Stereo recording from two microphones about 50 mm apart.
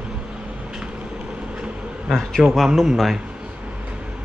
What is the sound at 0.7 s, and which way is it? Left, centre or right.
Vehicle, centre.